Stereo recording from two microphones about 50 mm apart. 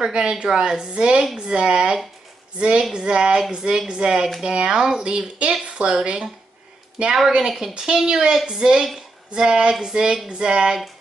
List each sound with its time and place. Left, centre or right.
0.0 s speech: centre